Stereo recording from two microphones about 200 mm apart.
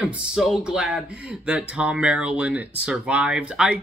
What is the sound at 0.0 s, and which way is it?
Speech, 5° right (ahead or behind).